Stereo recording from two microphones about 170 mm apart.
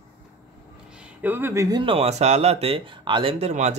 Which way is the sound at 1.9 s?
40° right (ahead or behind).